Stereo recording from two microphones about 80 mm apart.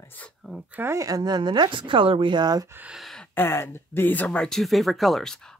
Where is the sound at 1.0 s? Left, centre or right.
Right.